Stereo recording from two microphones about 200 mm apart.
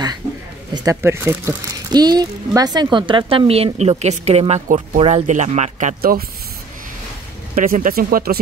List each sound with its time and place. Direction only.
0.7 s speech: 15° right (ahead or behind); by 6.2 s 40° right (ahead or behind)
7.5 s speech: 45° right (ahead or behind)